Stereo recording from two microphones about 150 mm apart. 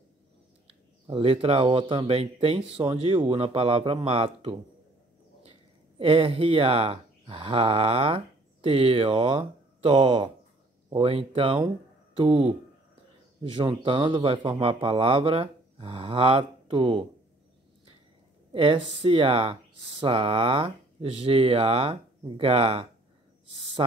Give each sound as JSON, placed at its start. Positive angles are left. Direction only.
{"t": 1.0, "sound": "speech", "side_deg": -35}
{"t": 5.9, "sound": "speech", "side_deg": -40}
{"t": 18.5, "sound": "speech", "side_deg": -35}